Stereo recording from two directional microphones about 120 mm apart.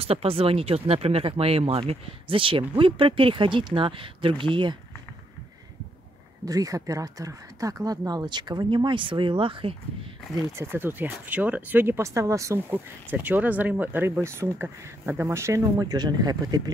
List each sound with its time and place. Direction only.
0.0 s speech: 55° right (ahead or behind)
6.4 s speech: 30° right (ahead or behind); by 9.8 s 45° right (ahead or behind)
10.5 s speech: 20° right (ahead or behind)